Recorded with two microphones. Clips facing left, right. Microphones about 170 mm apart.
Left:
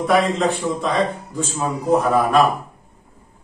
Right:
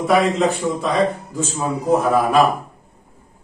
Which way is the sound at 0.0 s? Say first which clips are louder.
Right 1 dB; centre (ahead or behind).